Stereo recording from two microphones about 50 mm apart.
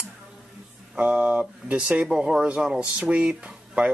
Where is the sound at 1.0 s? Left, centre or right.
Right.